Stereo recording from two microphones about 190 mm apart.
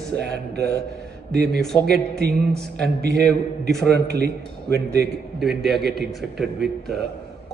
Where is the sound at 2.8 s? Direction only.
60° right (ahead or behind).